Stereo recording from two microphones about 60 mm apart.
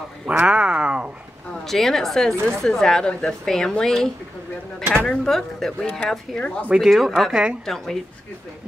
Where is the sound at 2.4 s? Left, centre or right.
Right.